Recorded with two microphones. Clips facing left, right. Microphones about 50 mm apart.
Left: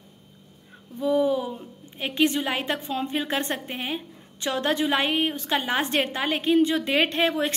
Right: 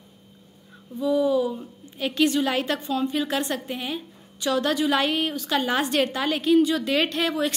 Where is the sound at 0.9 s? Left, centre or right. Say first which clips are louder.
Right 1 dB; left.